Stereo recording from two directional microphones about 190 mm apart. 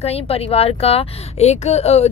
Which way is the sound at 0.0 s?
30° left (ahead or behind).